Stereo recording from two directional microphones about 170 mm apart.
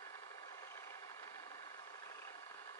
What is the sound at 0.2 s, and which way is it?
Vehicle, 20° left (ahead or behind).